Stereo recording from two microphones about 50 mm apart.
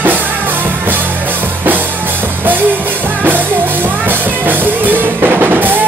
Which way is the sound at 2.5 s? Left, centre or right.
Right.